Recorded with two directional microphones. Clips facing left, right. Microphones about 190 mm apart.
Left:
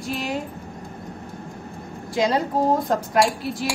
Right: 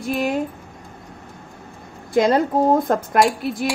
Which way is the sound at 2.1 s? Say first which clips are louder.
Right 5 dB; 50° right (ahead or behind).